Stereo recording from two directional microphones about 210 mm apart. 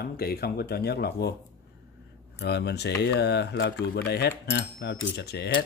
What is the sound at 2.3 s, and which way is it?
Speech, 55° left (ahead or behind).